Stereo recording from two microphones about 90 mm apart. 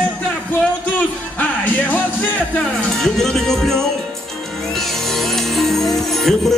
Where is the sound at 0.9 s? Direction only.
20° left (ahead or behind).